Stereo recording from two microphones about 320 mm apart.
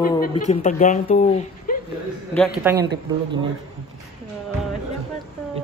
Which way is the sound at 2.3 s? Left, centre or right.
Centre.